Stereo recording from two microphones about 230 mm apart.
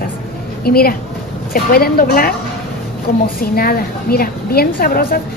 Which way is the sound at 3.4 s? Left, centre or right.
Left.